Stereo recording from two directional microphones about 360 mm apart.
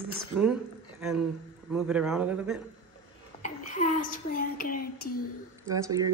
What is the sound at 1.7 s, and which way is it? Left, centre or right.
Speech, centre.